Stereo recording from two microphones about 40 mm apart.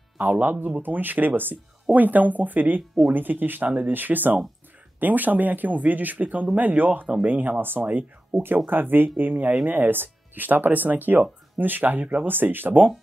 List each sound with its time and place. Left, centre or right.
0.2 s speech: right
8.6 s speech: right
12.3 s speech: right